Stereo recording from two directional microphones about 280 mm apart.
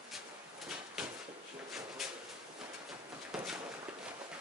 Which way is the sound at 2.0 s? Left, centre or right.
Centre.